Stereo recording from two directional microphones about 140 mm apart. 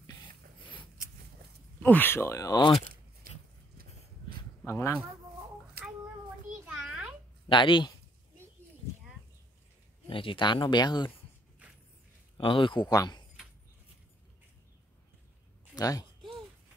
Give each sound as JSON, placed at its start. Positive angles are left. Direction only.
{"t": 1.8, "sound": "speech", "side_deg": 15}
{"t": 4.6, "sound": "speech", "side_deg": 20}
{"t": 6.6, "sound": "a sound", "side_deg": -5}
{"t": 7.4, "sound": "speech", "side_deg": 35}
{"t": 10.0, "sound": "speech", "side_deg": 40}
{"t": 12.4, "sound": "speech", "side_deg": 35}
{"t": 15.7, "sound": "speech", "side_deg": 25}